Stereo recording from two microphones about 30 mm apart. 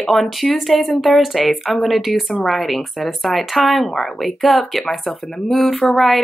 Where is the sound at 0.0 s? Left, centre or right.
Centre.